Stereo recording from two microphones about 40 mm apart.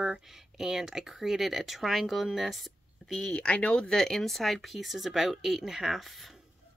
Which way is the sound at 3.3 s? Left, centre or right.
Left.